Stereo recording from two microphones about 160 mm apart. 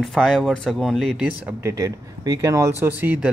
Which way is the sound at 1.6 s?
20° right (ahead or behind).